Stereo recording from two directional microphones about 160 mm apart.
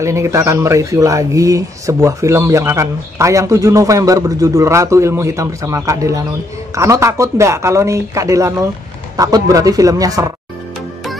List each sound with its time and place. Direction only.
0.0 s speech: 20° right (ahead or behind)